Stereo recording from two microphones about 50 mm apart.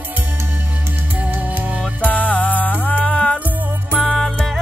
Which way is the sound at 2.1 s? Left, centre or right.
Left.